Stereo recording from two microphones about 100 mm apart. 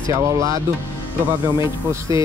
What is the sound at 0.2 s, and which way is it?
Speech, 35° right (ahead or behind).